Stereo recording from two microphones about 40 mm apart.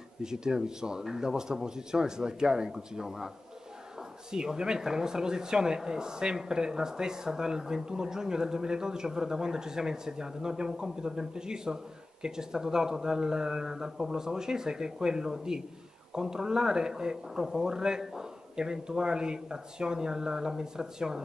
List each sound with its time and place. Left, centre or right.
0.2 s speech: centre
4.3 s speech: centre